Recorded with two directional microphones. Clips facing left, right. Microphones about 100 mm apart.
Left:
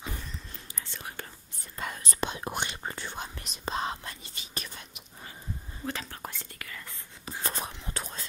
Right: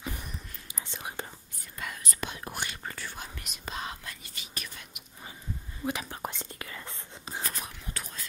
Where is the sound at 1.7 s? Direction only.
30° left (ahead or behind).